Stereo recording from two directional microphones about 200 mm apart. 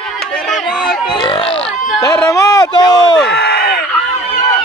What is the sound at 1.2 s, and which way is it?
Burping, 25° left (ahead or behind).